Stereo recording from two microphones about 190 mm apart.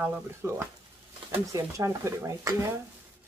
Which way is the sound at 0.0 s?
15° right (ahead or behind).